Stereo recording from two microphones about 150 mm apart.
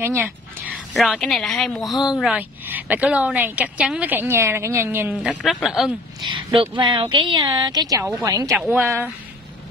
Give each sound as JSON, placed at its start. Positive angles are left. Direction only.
{"t": 0.0, "sound": "dog", "side_deg": -15}
{"t": 0.9, "sound": "a woman's voice", "side_deg": 0}
{"t": 5.3, "sound": "speech", "side_deg": 0}
{"t": 6.2, "sound": "a sound", "side_deg": -35}
{"t": 6.8, "sound": "a woman's voice", "side_deg": -30}